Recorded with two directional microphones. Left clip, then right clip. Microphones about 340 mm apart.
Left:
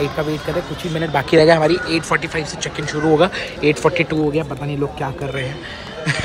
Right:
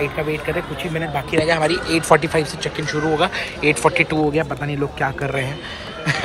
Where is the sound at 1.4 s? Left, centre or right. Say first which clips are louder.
Left 5 dB; centre.